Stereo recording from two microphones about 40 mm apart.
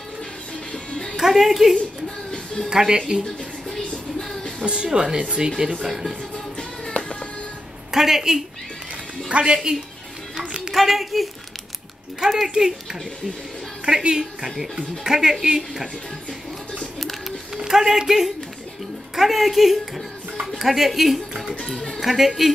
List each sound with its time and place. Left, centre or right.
0.7 s music: centre
1.1 s speech: centre
2.7 s speech: centre
4.6 s speech: right
5.9 s speech: centre
7.9 s speech: centre
10.7 s speech: centre
12.4 s speech: centre
13.8 s speech: centre
17.6 s speech: centre